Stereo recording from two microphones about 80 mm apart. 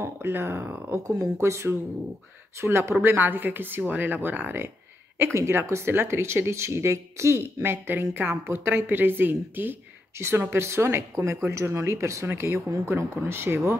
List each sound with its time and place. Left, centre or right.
0.0 s speech: right
1.0 s speech: right